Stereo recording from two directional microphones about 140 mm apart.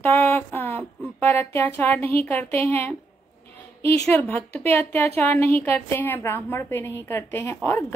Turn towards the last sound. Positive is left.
turn(degrees=15)  # may be behind; listen again after turning